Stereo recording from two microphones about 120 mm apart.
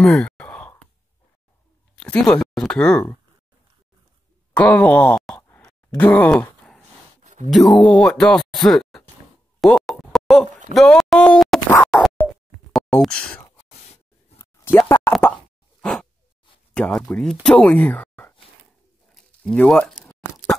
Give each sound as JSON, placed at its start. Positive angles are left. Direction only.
{"t": 0.0, "sound": "sigh", "side_deg": 5}
{"t": 2.0, "sound": "speech", "side_deg": 5}
{"t": 4.6, "sound": "speech", "side_deg": 10}
{"t": 5.5, "sound": "sigh", "side_deg": 10}
{"t": 7.2, "sound": "a sound", "side_deg": -80}
{"t": 7.5, "sound": "speech", "side_deg": 0}
{"t": 9.6, "sound": "a sound", "side_deg": 0}
{"t": 11.8, "sound": "scratching", "side_deg": 0}
{"t": 13.0, "sound": "speech", "side_deg": 10}
{"t": 14.4, "sound": "a sound", "side_deg": 20}
{"t": 15.2, "sound": "speech", "side_deg": 15}
{"t": 15.8, "sound": "a sound", "side_deg": 5}
{"t": 16.7, "sound": "speech", "side_deg": 5}